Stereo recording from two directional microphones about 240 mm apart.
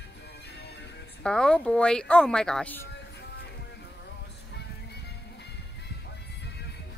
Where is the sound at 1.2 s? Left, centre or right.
Centre.